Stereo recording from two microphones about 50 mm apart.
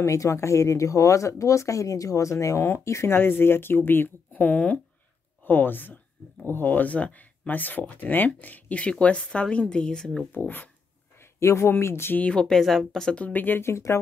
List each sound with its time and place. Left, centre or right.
0.0 s speech: left
3.1 s speech: left
4.3 s a woman's voice: left; by 10.2 s centre
11.3 s speech: left
12.3 s speech: centre
13.3 s speech: left
13.6 s speech: left